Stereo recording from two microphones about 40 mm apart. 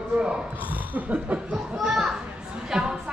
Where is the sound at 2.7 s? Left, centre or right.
Centre.